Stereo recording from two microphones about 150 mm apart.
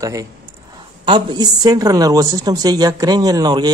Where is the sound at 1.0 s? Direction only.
30° right (ahead or behind).